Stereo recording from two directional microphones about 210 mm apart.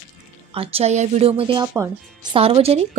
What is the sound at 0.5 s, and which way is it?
A woman's voice, 30° right (ahead or behind).